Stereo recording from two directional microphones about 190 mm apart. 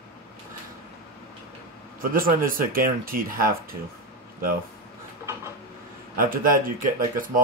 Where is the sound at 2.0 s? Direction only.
50° right (ahead or behind).